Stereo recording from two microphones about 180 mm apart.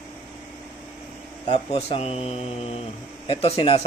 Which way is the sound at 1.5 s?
30° left (ahead or behind).